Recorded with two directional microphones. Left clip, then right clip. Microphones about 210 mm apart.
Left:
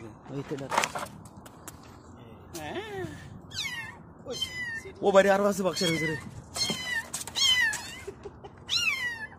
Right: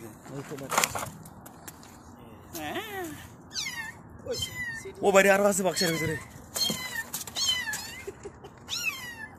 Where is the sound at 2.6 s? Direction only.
10° left (ahead or behind).